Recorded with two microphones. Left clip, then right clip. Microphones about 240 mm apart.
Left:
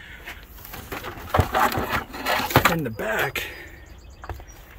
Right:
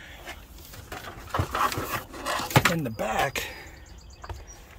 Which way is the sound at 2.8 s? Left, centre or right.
Centre.